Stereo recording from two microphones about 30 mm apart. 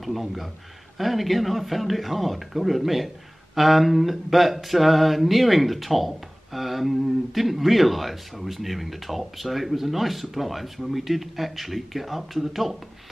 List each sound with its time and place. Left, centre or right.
0.0 s mantra: centre